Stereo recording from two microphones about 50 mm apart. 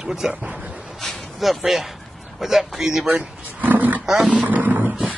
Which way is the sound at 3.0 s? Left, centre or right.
Right.